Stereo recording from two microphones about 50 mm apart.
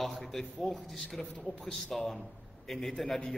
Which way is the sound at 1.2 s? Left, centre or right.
Centre.